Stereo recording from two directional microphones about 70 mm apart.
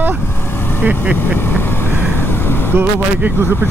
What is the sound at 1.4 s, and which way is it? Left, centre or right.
Speech, left.